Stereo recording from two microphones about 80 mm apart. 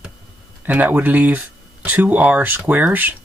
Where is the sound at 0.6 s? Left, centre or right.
Right.